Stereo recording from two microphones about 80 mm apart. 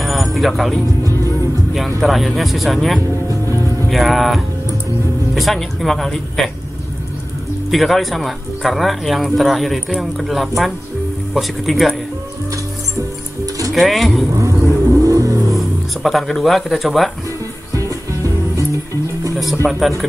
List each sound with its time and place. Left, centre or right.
0.0 s music: centre
2.0 s speech: centre
7.7 s speech: centre
13.7 s speech: centre
14.3 s vehicle: right
15.5 s speech: centre
17.7 s music: right
19.6 s speech: centre